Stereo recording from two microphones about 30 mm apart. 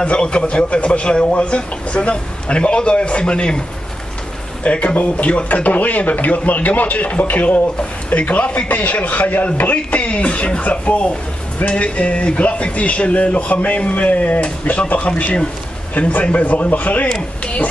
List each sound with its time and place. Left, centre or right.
0.0 s a man's voice: left
4.6 s a man's voice: left
8.1 s a man's voice: left
8.6 s speech: left
9.9 s a man's voice: left
11.7 s a man's voice: left
14.4 s a man's voice: left
15.9 s a man's voice: left
16.2 s speech: left